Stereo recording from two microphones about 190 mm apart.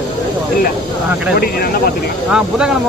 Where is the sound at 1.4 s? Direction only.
55° left (ahead or behind).